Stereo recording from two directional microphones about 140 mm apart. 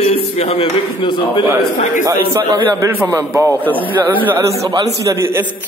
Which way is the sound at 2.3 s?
15° right (ahead or behind).